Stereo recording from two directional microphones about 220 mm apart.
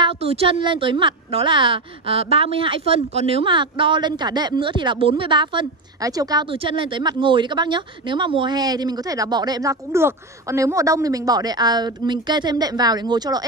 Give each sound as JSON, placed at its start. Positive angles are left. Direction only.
{"t": 0.0, "sound": "a woman's voice", "side_deg": -25}